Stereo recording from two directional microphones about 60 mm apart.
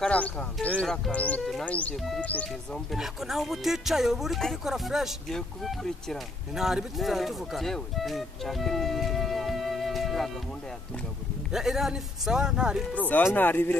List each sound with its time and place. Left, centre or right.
0.1 s speech: left
2.7 s speech: centre
6.5 s speech: centre
11.5 s a man's voice: centre
13.1 s speech: left